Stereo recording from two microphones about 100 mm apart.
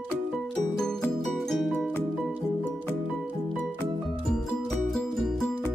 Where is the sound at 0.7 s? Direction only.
5° left (ahead or behind).